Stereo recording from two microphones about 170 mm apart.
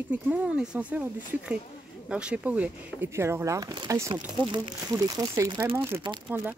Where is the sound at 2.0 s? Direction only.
5° right (ahead or behind).